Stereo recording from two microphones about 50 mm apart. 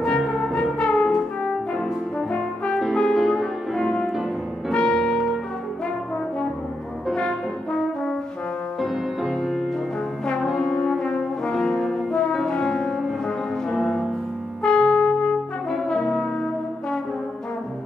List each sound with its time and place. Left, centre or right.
0.0 s music: centre
0.4 s brass instrument: centre
2.1 s brass instrument: centre
2.8 s music: centre
7.2 s brass instrument: centre
8.8 s music: centre
10.4 s brass instrument: centre
13.7 s music: centre
15.9 s brass instrument: centre